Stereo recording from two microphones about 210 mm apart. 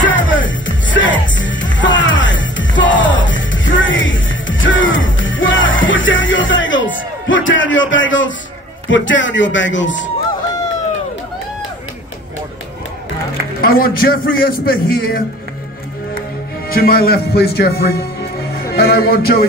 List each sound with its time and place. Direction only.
0.0 s music: 65° left (ahead or behind)
8.8 s a man's voice: 60° left (ahead or behind)
13.6 s a man's voice: 45° left (ahead or behind)
16.6 s speech: 45° left (ahead or behind)